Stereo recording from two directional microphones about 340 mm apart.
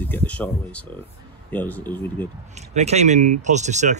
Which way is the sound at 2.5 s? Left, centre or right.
Centre.